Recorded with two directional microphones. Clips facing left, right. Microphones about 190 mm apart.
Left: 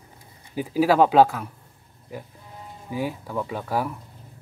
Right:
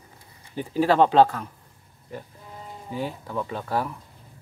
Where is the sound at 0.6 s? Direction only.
5° left (ahead or behind).